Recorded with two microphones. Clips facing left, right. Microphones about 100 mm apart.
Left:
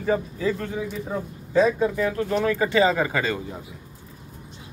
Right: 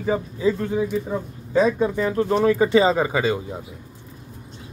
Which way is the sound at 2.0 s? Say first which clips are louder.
Right 3 dB; 25° right (ahead or behind).